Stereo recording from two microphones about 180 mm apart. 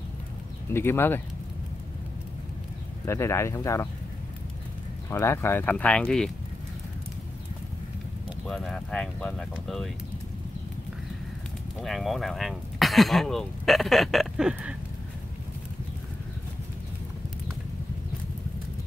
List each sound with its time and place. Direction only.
0.7 s speech: 10° left (ahead or behind)
3.1 s speech: 15° left (ahead or behind)
5.1 s speech: 15° left (ahead or behind)
8.5 s speech: 5° left (ahead or behind)
11.8 s speech: centre (ahead or behind)